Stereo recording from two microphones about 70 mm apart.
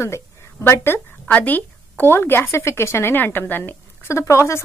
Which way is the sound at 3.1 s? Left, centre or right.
Left.